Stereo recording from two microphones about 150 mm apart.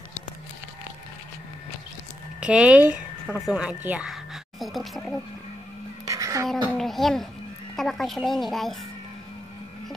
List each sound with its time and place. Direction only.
2.4 s a woman's voice: 10° right (ahead or behind)
6.0 s a sound: 20° right (ahead or behind)
6.4 s a woman's voice: centre (ahead or behind)